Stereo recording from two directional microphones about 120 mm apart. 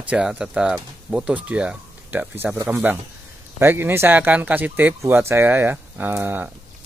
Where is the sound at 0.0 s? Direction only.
10° right (ahead or behind).